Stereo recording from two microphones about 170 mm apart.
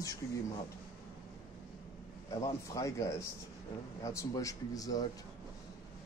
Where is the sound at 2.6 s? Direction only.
20° left (ahead or behind).